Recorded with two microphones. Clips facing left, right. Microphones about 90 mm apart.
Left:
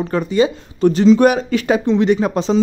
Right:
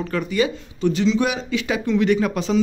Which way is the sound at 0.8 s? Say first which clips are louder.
Left 8 dB; 45° left (ahead or behind).